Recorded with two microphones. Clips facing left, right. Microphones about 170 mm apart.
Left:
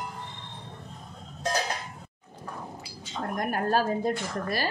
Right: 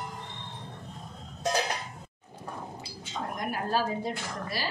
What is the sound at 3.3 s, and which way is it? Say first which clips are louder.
A woman's voice: left 4 dB; 50° left (ahead or behind).